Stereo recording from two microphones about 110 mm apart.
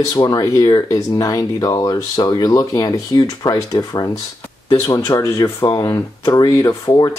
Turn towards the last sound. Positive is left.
turn(degrees=35)  # may be behind; listen again after turning